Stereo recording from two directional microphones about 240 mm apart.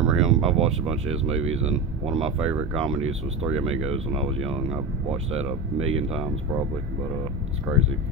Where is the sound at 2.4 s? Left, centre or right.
Centre.